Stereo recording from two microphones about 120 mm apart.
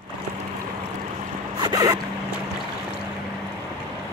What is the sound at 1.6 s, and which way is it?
Boat, 35° right (ahead or behind).